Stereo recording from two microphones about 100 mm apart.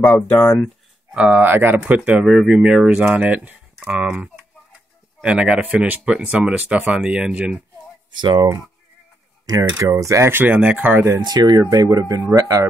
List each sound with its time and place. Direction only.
0.0 s speech: 15° left (ahead or behind)
1.1 s speech: 10° right (ahead or behind)
1.4 s speech: 20° right (ahead or behind)
8.1 s speech: 50° right (ahead or behind)
9.7 s speech: 30° right (ahead or behind); by 11.1 s 15° right (ahead or behind)
11.1 s speech: 45° right (ahead or behind)